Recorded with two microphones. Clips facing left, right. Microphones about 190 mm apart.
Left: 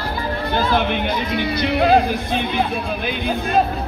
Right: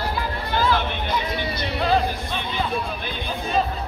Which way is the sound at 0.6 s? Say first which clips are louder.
Left 3 dB; 55° left (ahead or behind).